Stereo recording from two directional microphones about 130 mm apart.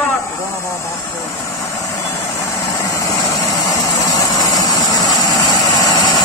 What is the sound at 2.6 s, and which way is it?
Vehicle, 25° left (ahead or behind).